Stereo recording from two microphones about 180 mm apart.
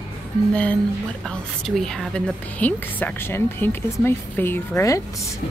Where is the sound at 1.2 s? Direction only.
5° left (ahead or behind).